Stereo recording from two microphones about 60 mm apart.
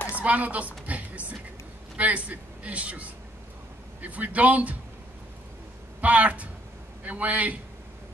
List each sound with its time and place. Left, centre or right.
0.1 s a sound: right
2.0 s a man's voice: right
5.9 s a man's voice: right